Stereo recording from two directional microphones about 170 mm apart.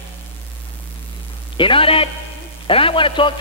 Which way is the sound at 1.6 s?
30° left (ahead or behind).